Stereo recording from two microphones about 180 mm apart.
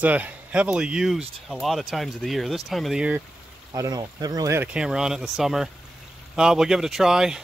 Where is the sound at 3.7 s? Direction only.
20° right (ahead or behind).